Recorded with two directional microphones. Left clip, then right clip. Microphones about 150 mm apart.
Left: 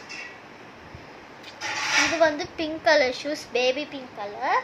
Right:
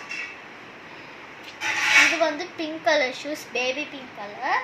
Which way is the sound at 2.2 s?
10° left (ahead or behind).